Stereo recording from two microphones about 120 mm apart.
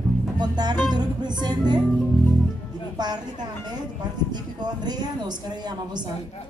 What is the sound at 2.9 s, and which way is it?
A woman's voice, 35° right (ahead or behind).